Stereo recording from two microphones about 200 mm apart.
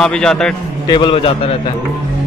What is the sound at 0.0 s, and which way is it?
Speech, 5° left (ahead or behind).